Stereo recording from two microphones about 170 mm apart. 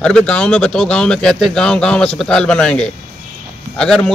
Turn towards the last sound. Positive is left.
turn(degrees=5)  # may be behind; listen again after turning